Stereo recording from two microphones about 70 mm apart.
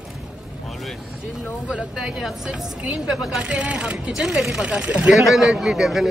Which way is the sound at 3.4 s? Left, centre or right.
Centre.